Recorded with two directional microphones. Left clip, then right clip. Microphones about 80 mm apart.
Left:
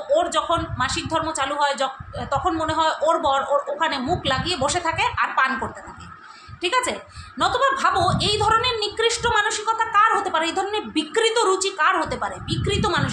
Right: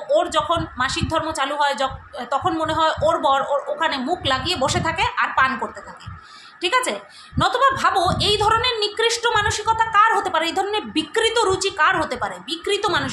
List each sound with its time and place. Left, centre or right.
0.1 s a woman's voice: right